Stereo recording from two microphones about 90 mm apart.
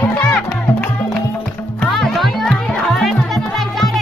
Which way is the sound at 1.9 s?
Centre (ahead or behind).